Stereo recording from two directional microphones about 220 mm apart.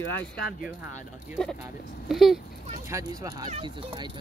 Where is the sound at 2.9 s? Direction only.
15° right (ahead or behind).